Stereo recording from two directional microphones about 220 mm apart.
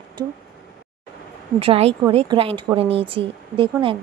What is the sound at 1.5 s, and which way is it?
Speech, 25° right (ahead or behind).